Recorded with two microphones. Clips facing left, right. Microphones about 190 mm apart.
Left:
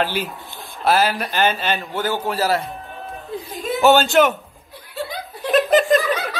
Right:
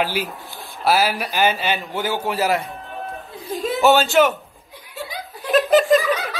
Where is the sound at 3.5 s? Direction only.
Centre (ahead or behind).